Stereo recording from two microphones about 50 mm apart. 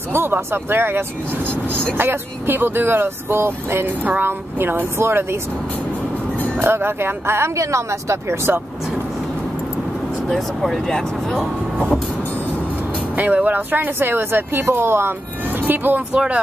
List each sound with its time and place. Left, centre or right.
0.1 s speech: right
6.6 s speech: right
7.5 s speech: right
10.3 s speech: centre
13.1 s speech: right
16.1 s speech: right